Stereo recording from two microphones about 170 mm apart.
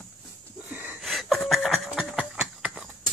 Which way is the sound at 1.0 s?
Centre (ahead or behind).